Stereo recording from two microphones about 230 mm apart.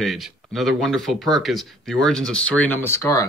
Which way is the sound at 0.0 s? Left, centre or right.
Centre.